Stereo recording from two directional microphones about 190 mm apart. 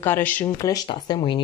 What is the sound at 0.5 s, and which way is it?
Speech, 20° left (ahead or behind).